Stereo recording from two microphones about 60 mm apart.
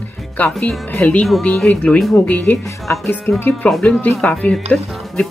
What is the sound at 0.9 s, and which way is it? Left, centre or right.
Speech, left.